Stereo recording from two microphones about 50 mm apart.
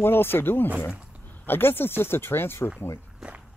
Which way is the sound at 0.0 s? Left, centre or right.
Left.